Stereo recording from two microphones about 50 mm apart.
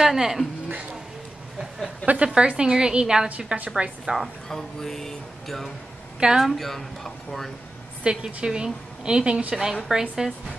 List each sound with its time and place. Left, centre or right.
0.0 s a woman's voice: centre
2.0 s a woman's voice: right
3.3 s a woman's voice: right
4.5 s speech: centre
6.1 s a woman's voice: centre
6.4 s speech: centre
8.0 s a woman's voice: centre
9.8 s a woman's voice: centre